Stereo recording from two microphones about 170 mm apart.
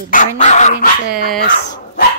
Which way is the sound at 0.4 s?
45° left (ahead or behind).